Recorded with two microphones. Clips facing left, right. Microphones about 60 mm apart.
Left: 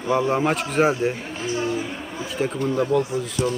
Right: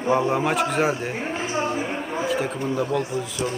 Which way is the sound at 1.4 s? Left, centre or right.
Right.